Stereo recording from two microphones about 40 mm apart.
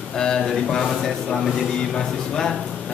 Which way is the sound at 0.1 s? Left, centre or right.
Centre.